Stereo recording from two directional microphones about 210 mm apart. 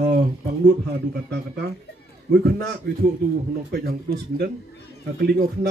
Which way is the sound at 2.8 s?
55° right (ahead or behind).